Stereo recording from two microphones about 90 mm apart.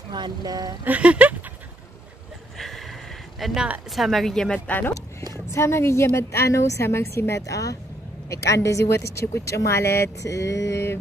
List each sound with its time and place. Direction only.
0.1 s speech: 50° right (ahead or behind)
0.8 s speech: 15° right (ahead or behind)
2.5 s a sound: 5° left (ahead or behind)
3.9 s speech: centre (ahead or behind)
4.6 s speech: 20° left (ahead or behind)
5.5 s speech: 30° left (ahead or behind)